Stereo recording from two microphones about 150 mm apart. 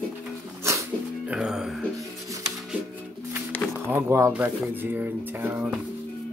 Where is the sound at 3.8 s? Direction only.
15° right (ahead or behind).